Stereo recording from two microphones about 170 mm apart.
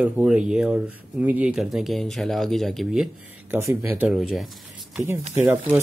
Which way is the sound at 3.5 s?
15° right (ahead or behind).